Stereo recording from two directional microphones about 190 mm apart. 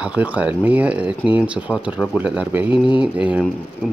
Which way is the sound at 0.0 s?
5° right (ahead or behind).